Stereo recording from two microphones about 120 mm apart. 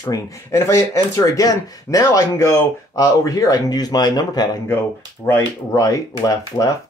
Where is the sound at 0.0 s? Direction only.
25° left (ahead or behind).